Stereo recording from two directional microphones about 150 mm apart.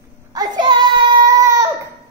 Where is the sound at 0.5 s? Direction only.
30° right (ahead or behind).